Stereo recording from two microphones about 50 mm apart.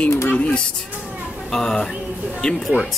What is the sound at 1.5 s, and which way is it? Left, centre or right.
Speech, centre.